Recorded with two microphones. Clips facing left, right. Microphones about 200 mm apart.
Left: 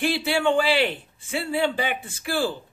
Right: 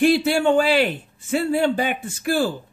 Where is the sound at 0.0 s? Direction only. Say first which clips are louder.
Right 6 dB; 45° right (ahead or behind).